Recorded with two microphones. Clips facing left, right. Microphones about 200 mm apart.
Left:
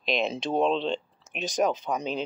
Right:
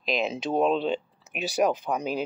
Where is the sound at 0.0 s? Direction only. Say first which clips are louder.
Even; centre (ahead or behind).